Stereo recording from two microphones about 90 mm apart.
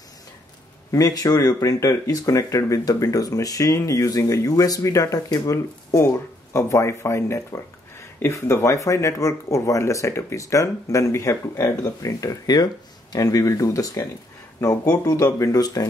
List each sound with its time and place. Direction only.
0.9 s speech: 40° left (ahead or behind)